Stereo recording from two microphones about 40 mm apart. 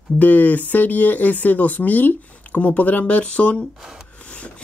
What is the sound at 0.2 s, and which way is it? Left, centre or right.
Speech, left.